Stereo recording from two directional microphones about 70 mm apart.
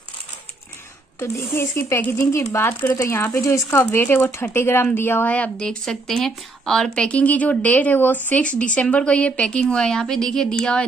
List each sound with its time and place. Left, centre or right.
1.2 s speech: left
2.0 s speech: left
2.3 s speech: left
3.9 s speech: left
5.3 s speech: centre